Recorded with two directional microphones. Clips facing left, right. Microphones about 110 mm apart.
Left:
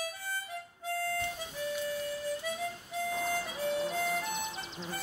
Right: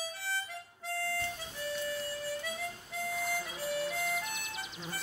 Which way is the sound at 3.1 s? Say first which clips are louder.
Left 1 dB; 15° left (ahead or behind).